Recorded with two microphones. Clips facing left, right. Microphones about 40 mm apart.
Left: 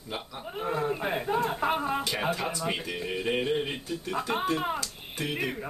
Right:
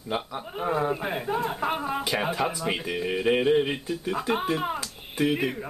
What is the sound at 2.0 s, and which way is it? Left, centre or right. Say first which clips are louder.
Speech: right 3 dB; centre.